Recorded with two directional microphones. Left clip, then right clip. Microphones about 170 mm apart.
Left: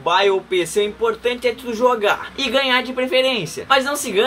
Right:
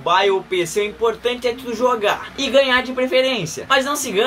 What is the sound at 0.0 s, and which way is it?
A woman's voice, 15° left (ahead or behind).